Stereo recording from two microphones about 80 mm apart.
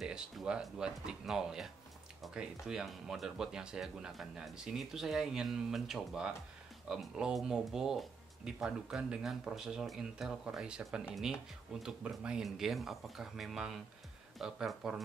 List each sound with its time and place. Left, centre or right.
0.0 s speech: centre